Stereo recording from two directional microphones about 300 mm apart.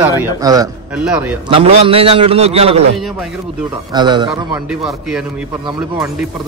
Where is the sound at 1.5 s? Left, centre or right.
Centre.